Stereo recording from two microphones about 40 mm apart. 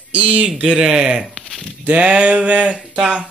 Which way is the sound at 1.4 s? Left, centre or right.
Centre.